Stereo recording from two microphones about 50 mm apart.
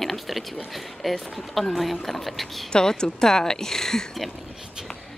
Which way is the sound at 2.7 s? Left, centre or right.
Centre.